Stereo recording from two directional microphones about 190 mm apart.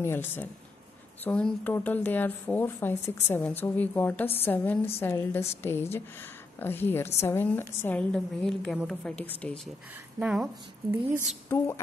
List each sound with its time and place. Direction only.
0.0 s a woman's voice: 10° left (ahead or behind); by 11.0 s 5° right (ahead or behind)
11.4 s speech: 15° left (ahead or behind)